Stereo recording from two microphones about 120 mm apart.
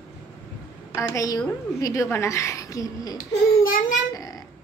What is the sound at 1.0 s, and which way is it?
A woman's voice, 25° left (ahead or behind).